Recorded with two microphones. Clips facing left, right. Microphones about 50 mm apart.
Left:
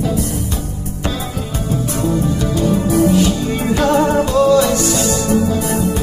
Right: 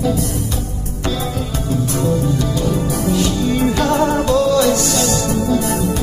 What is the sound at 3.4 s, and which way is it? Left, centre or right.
Music, centre.